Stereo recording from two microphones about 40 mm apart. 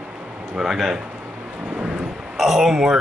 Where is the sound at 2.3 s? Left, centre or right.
Centre.